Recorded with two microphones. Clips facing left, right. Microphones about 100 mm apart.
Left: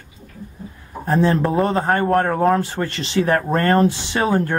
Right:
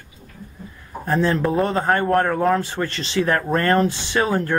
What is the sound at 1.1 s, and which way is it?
Speech, 20° left (ahead or behind).